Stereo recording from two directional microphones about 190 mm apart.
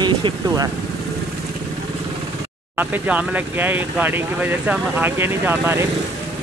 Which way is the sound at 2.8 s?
10° right (ahead or behind).